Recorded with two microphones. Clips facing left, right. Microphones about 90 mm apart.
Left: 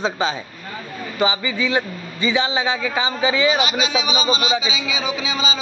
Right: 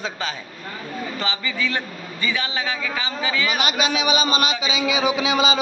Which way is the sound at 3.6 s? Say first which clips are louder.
Even; 50° right (ahead or behind).